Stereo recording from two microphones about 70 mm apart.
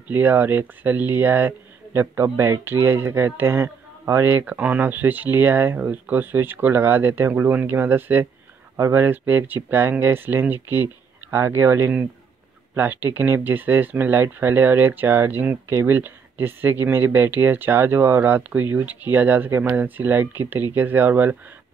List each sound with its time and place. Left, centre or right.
0.1 s speech: right